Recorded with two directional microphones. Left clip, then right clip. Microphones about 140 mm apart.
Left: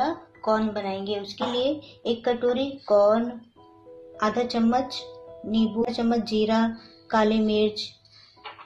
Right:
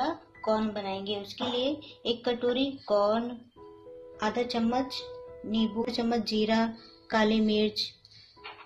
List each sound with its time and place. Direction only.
0.0 s a woman's voice: centre (ahead or behind)
4.2 s a woman's voice: centre (ahead or behind)
5.9 s speech: 15° right (ahead or behind)